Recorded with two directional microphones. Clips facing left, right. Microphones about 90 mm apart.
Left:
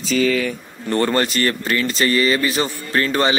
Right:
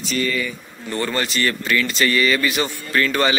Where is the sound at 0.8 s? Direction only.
45° left (ahead or behind).